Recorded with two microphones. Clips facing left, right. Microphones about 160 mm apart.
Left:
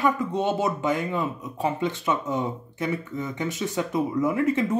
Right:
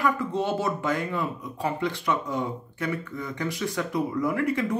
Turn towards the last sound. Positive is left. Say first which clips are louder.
# left 3 dB
turn(degrees=25)  # may be behind; listen again after turning